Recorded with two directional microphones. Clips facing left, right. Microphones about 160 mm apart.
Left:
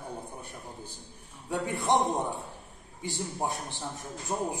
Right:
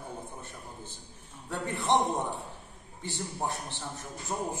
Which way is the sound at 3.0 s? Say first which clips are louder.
Left 2 dB; 15° left (ahead or behind).